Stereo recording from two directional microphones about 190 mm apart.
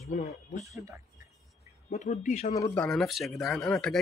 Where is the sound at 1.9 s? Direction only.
35° left (ahead or behind).